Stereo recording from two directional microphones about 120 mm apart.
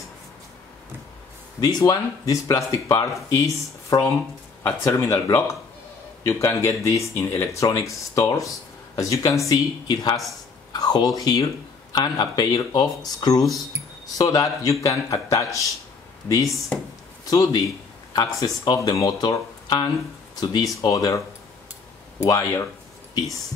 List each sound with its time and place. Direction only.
1.6 s speech: 30° left (ahead or behind)
17.3 s a man's voice: 30° left (ahead or behind)
22.2 s speech: 25° left (ahead or behind)